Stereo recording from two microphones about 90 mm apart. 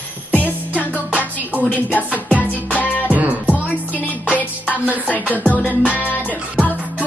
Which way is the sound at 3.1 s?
20° right (ahead or behind).